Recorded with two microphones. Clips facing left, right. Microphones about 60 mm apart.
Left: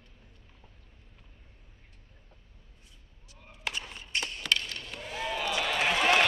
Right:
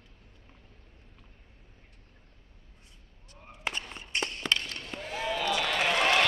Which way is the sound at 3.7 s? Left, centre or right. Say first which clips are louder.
Even; right.